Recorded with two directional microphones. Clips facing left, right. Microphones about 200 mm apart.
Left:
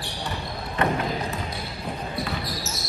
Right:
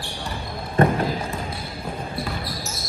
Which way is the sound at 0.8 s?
50° right (ahead or behind).